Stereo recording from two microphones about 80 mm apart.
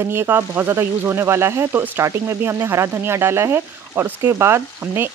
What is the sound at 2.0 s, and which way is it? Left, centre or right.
Speech, right.